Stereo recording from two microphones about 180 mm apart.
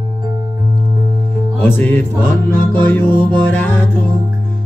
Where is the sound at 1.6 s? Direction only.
10° left (ahead or behind).